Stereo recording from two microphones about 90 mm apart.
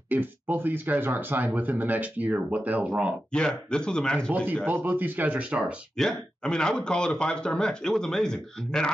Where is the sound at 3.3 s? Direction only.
10° left (ahead or behind).